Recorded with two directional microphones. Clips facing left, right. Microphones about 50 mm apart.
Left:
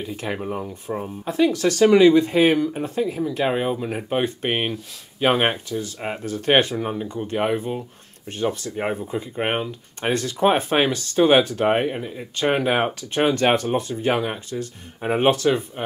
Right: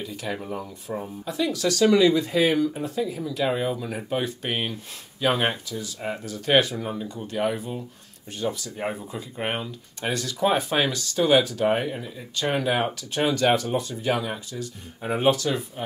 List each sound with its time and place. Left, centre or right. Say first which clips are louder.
0.1 s speech: left 4 dB; left